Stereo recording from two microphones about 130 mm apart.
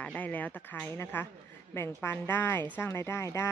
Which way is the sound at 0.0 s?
10° left (ahead or behind).